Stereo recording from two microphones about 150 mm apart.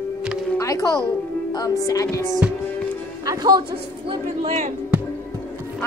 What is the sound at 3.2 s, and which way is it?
Music, 25° right (ahead or behind).